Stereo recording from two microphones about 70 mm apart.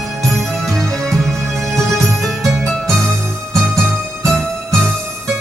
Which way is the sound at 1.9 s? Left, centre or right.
Right.